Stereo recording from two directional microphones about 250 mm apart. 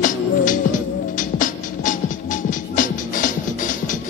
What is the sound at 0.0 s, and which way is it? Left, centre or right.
Music, left.